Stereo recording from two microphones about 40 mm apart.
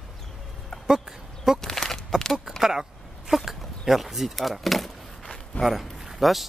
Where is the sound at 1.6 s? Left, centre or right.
Centre.